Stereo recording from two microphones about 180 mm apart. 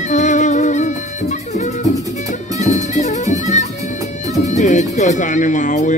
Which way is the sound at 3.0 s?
40° left (ahead or behind).